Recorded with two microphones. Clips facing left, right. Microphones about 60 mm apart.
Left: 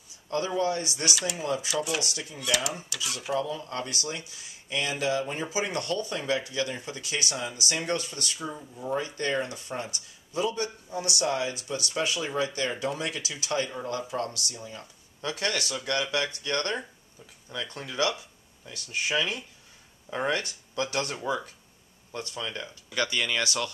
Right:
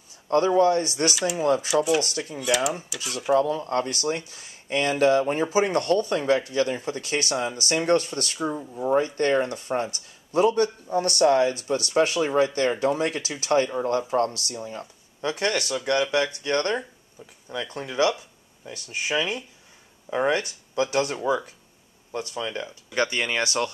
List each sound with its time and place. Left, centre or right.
0.3 s speech: right
1.1 s speech: centre
1.4 s speech: right
2.3 s speech: centre
3.3 s speech: right